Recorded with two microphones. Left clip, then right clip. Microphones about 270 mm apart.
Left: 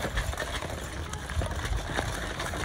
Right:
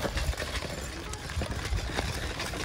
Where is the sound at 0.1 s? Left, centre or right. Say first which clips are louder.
Left 1 dB; centre.